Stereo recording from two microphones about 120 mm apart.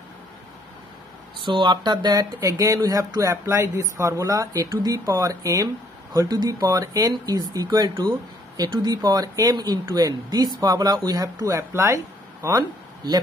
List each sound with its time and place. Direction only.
1.4 s speech: 40° right (ahead or behind)